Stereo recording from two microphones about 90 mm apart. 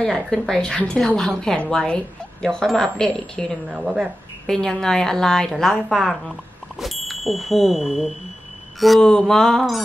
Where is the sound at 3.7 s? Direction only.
10° right (ahead or behind).